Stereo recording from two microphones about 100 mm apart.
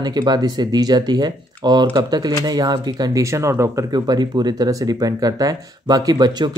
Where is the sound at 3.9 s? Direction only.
45° right (ahead or behind).